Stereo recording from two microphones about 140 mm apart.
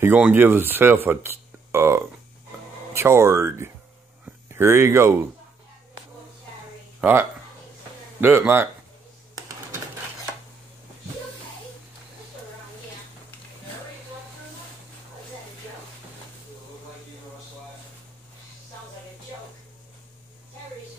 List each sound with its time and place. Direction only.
0.2 s speech: 15° right (ahead or behind)
7.0 s speech: 15° right (ahead or behind)